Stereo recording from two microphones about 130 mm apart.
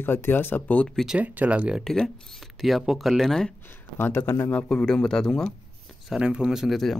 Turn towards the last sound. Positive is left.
turn(degrees=0)  # may be behind; listen again after turning